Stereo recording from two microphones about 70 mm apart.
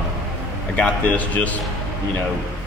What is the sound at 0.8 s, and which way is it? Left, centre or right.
Speech, left.